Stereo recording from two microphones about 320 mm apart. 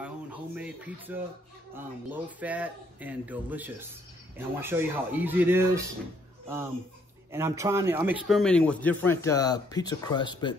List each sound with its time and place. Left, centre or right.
0.0 s speech: centre
7.3 s speech: centre